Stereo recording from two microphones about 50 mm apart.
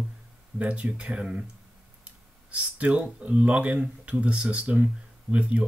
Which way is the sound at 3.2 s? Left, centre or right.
Right.